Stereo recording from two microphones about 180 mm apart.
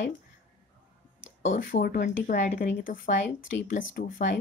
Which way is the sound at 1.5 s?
50° left (ahead or behind).